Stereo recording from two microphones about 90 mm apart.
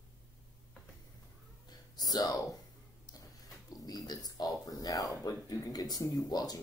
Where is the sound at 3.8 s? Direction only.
45° left (ahead or behind).